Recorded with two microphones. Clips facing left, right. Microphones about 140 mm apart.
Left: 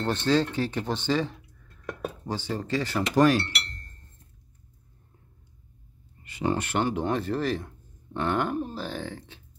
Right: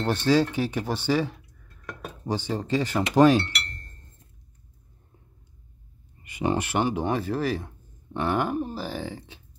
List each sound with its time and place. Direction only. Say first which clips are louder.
0.0 s speech: right 2 dB; 10° right (ahead or behind)
2.2 s speech: right 5 dB; 15° right (ahead or behind)
6.2 s speech: right 2 dB; 15° right (ahead or behind)